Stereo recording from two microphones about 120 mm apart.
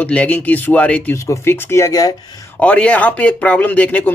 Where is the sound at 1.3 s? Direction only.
20° left (ahead or behind).